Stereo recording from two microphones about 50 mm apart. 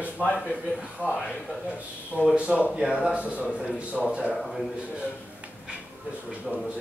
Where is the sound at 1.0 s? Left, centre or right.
Right.